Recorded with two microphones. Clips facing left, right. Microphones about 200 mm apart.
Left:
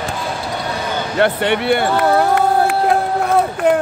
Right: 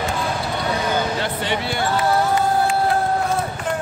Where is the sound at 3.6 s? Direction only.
65° left (ahead or behind).